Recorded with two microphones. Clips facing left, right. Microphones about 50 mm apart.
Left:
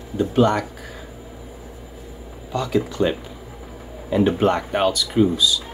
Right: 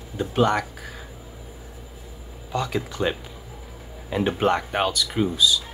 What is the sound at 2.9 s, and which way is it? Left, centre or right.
Speech, centre.